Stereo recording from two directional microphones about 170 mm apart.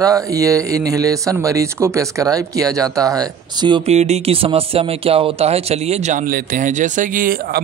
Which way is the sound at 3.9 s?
40° right (ahead or behind).